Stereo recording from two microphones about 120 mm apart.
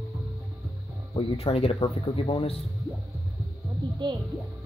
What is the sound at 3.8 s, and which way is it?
Music, 40° right (ahead or behind).